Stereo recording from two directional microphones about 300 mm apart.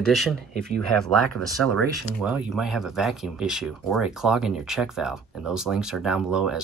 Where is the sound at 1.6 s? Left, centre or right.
Centre.